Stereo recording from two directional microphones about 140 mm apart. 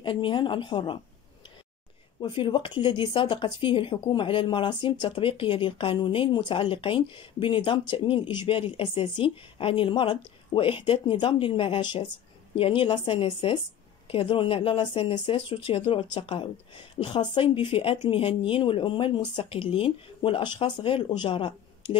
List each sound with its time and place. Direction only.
0.0 s speech: 35° left (ahead or behind)
2.1 s speech: 35° left (ahead or behind)